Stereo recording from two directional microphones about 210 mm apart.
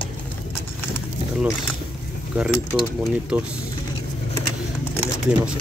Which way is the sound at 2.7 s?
5° right (ahead or behind).